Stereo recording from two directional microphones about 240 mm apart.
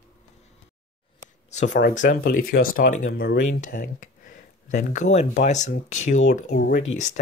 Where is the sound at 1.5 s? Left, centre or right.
Left.